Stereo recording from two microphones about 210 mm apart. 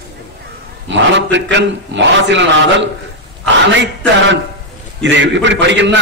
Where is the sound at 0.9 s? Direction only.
60° right (ahead or behind).